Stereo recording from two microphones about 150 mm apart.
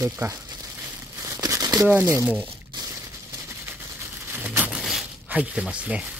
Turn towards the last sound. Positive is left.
turn(degrees=-10)  # may be behind; listen again after turning